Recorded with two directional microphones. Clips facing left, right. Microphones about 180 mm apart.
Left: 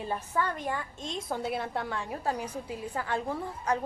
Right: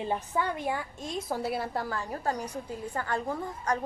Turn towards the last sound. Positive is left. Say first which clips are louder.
# even
turn(degrees=5)  # may be behind; listen again after turning